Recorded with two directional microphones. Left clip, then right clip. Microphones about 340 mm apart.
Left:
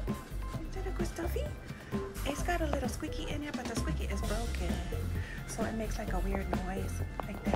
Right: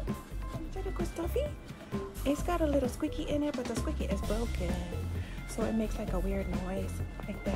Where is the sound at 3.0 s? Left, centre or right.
Centre.